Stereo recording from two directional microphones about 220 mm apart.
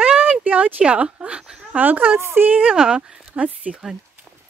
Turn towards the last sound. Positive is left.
turn(degrees=-5)  # may be behind; listen again after turning